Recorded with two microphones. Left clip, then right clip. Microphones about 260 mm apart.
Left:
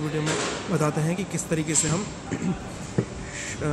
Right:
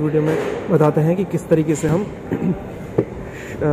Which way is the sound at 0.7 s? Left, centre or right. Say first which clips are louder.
Right 11 dB; centre.